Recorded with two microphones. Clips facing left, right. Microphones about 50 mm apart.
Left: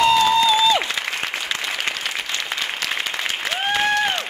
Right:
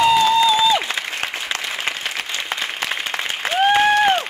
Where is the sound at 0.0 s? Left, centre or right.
Centre.